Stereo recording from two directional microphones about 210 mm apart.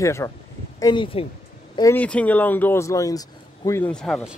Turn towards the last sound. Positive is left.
turn(degrees=5)  # may be behind; listen again after turning